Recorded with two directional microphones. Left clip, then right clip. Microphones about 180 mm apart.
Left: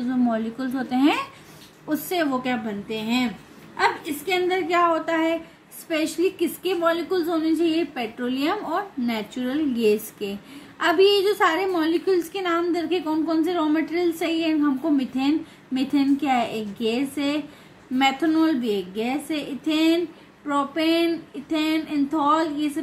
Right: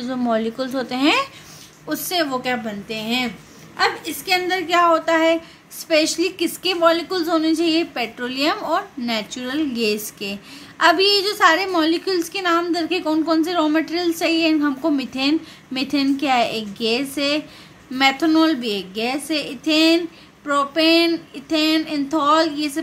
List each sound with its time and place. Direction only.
0.0 s a woman's voice: 45° right (ahead or behind)
3.7 s a woman's voice: 55° right (ahead or behind)